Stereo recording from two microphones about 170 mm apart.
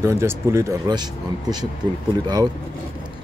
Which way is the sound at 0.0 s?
15° right (ahead or behind).